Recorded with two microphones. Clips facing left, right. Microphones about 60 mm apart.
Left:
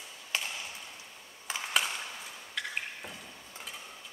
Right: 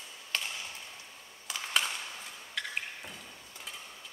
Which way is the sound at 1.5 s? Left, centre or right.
Left.